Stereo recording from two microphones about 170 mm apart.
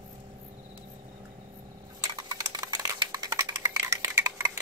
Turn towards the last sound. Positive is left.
turn(degrees=-20)  # may be behind; listen again after turning